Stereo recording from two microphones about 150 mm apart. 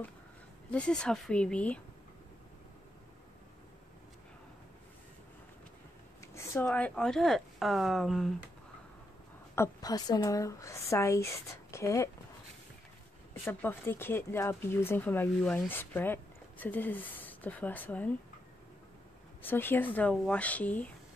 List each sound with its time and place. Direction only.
0.7 s speech: 5° left (ahead or behind)
6.2 s speech: 20° left (ahead or behind); by 8.3 s centre (ahead or behind)
9.6 s speech: 25° left (ahead or behind)
13.3 s speech: 15° left (ahead or behind)
19.4 s speech: 15° left (ahead or behind)